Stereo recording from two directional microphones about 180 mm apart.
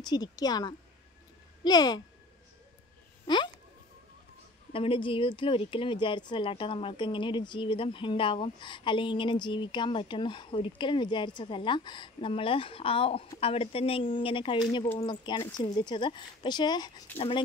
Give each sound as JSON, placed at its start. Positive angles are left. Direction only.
{"t": 0.0, "sound": "speech", "side_deg": 20}
{"t": 4.7, "sound": "speech", "side_deg": 30}